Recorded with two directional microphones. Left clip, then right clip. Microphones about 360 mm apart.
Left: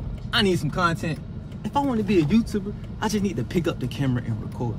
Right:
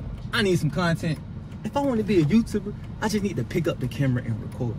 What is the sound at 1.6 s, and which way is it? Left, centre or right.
Speech, centre.